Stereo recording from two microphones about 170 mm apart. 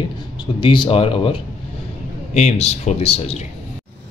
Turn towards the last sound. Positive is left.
turn(degrees=35)  # may be behind; listen again after turning